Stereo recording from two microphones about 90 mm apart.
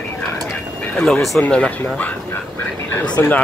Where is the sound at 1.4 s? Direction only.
15° left (ahead or behind).